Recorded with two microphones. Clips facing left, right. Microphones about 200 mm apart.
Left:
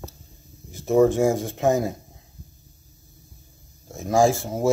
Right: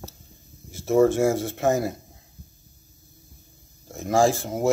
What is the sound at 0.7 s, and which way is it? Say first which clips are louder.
Speech: left 1 dB; 15° left (ahead or behind).